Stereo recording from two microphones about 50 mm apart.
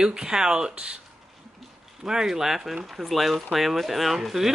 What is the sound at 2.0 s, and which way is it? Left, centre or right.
Speech, centre.